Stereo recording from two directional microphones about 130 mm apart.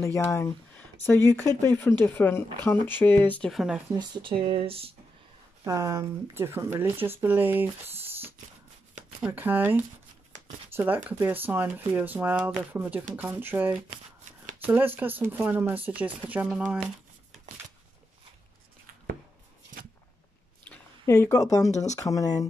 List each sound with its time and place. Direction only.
0.0 s speech: 20° left (ahead or behind)
3.5 s speech: 5° right (ahead or behind)
3.9 s speech: 35° right (ahead or behind)
5.6 s speech: 25° right (ahead or behind)
9.2 s speech: 15° right (ahead or behind)
21.0 s speech: 20° left (ahead or behind)
21.6 s speech: 65° left (ahead or behind)
21.9 s speech: 25° left (ahead or behind)